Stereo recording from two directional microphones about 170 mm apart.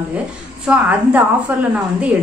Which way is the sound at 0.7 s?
10° right (ahead or behind).